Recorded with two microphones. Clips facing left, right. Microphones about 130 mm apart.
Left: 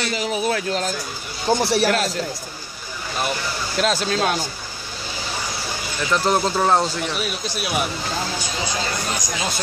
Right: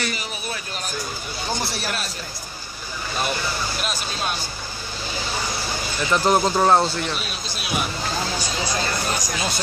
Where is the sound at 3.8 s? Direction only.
90° left.